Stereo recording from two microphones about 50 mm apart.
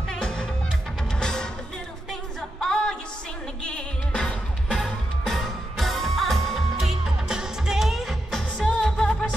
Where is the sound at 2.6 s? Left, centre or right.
Centre.